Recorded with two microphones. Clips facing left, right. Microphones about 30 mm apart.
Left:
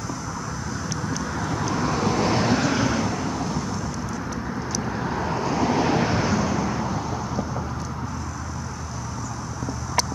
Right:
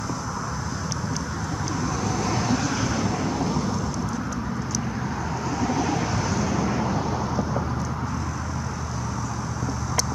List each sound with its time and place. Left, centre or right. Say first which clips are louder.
1.8 s vehicle: left 4 dB; left
2.8 s vehicle: left 2 dB; centre
5.2 s vehicle: left 4 dB; left
6.2 s vehicle: left 3 dB; centre
6.5 s vehicle: right 1 dB; centre